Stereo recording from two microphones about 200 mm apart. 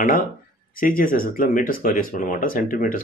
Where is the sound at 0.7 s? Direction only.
45° left (ahead or behind).